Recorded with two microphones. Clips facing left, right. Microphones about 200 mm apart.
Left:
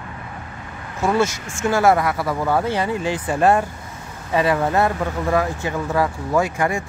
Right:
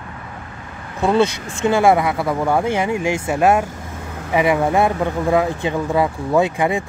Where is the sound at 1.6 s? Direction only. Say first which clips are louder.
Right 2 dB; 15° right (ahead or behind).